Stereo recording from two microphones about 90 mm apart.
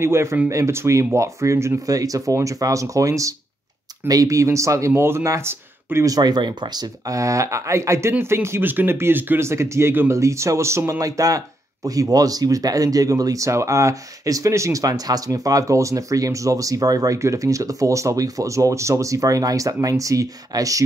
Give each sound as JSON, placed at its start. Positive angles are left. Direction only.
{"t": 0.0, "sound": "speech", "side_deg": -30}
{"t": 6.0, "sound": "speech", "side_deg": -45}